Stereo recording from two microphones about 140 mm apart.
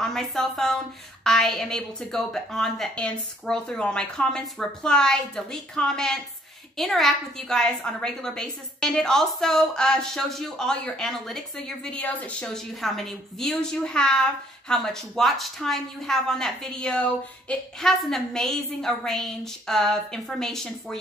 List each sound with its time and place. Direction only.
0.0 s a woman's voice: 5° left (ahead or behind)